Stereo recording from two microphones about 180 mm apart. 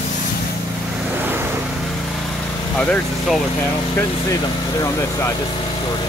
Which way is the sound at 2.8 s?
5° left (ahead or behind).